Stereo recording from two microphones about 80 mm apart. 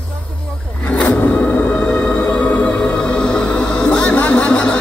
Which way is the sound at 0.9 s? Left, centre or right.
Centre.